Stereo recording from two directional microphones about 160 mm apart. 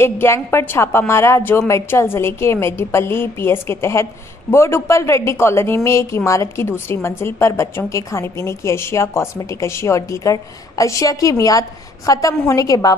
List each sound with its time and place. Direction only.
0.0 s a woman's voice: 15° left (ahead or behind)